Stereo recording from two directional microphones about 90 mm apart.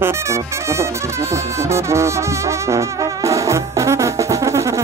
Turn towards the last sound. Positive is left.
turn(degrees=-35)  # may be behind; listen again after turning